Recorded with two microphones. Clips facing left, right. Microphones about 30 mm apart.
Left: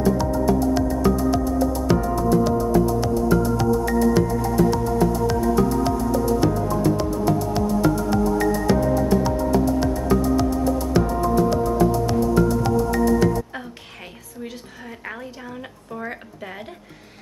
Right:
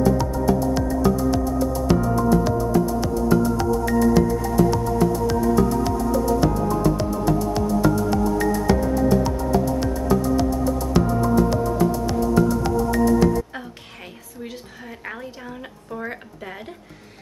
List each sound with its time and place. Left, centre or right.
0.0 s music: centre
6.4 s music: centre
15.9 s a sound: centre